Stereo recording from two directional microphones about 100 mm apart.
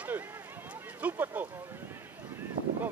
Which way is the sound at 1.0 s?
20° right (ahead or behind).